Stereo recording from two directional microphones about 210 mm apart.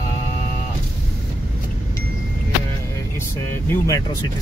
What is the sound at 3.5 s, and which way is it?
Speech, 10° left (ahead or behind).